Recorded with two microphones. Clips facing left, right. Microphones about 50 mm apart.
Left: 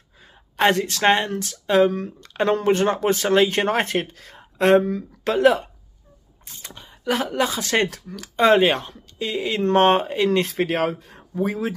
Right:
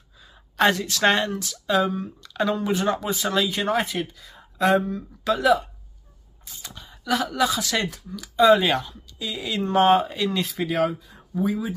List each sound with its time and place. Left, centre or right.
0.2 s a sound: left
1.0 s speech: left
1.3 s speech: left
1.9 s speech: left
2.1 s speech: left
6.7 s speech: left
7.9 s speech: left
8.6 s speech: left
9.6 s speech: left